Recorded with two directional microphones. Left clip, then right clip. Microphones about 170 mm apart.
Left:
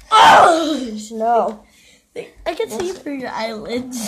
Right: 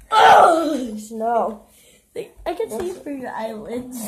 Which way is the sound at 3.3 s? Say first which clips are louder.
Left 4 dB; 40° left (ahead or behind).